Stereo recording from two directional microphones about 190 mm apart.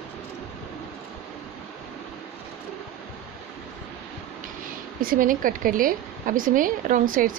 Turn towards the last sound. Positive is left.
turn(degrees=-45)  # may be behind; listen again after turning